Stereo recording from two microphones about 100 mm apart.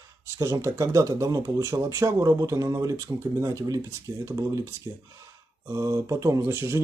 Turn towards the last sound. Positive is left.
turn(degrees=-25)  # may be behind; listen again after turning